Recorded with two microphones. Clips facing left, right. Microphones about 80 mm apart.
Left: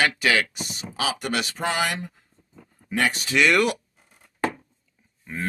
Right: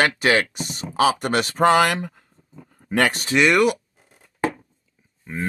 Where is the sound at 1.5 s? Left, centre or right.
Right.